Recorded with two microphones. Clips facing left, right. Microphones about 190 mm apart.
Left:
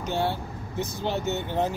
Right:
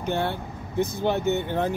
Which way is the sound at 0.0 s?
55° right (ahead or behind).